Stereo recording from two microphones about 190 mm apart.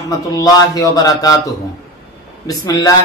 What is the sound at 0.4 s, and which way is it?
A man's voice, 20° left (ahead or behind).